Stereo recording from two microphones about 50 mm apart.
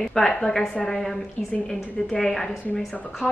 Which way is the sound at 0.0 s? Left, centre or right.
Centre.